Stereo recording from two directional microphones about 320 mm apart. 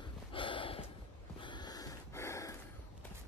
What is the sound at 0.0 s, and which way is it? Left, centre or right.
Snort, centre.